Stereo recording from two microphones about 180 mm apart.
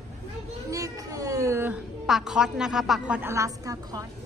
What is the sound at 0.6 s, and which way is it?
A child's voice, 20° right (ahead or behind).